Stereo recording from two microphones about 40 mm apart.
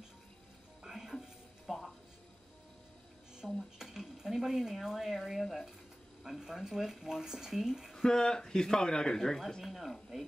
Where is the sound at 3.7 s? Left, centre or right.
Centre.